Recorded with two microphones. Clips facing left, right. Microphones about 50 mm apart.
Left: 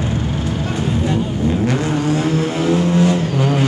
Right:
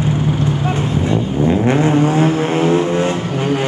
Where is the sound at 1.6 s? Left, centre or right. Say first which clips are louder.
Right 5 dB; right.